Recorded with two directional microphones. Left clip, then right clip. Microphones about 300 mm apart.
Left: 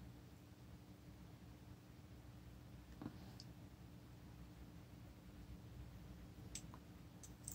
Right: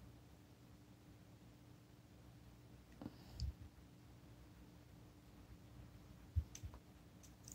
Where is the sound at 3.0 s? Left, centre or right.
Centre.